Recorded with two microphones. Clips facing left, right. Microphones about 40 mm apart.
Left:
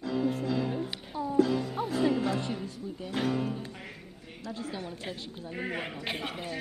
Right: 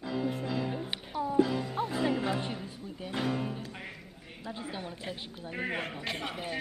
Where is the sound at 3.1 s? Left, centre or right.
Centre.